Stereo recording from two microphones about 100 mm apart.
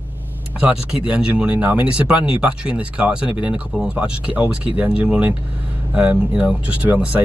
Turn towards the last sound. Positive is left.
turn(degrees=-15)  # may be behind; listen again after turning